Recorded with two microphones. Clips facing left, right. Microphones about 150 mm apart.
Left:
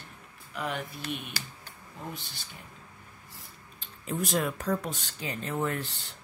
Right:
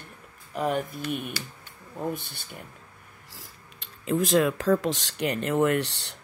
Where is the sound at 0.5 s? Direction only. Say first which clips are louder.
Right 7 dB; 45° right (ahead or behind).